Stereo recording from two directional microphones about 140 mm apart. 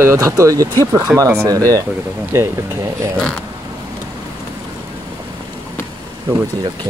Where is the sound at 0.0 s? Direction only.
20° right (ahead or behind).